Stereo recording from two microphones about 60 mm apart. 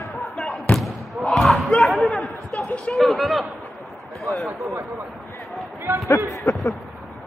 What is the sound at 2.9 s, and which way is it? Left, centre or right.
Speech, centre.